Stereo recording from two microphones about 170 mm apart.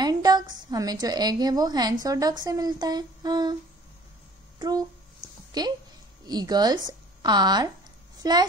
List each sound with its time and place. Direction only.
0.0 s a sound: 25° right (ahead or behind)
1.0 s speech: 25° right (ahead or behind)
4.6 s a woman's voice: 25° right (ahead or behind)